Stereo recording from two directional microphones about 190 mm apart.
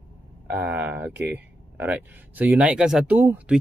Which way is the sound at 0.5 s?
10° right (ahead or behind).